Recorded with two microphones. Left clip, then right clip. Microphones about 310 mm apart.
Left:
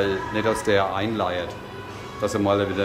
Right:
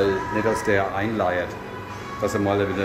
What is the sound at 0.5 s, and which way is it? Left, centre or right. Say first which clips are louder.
Speech: left 2 dB; centre.